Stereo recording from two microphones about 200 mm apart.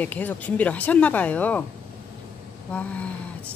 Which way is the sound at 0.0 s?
10° left (ahead or behind).